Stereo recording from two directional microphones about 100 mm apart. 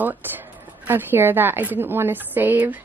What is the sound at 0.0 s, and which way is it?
A woman's voice, 20° right (ahead or behind).